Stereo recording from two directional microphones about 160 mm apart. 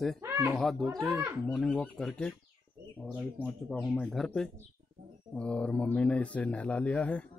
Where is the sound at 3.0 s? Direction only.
5° right (ahead or behind).